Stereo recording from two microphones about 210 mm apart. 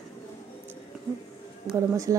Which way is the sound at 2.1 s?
15° right (ahead or behind).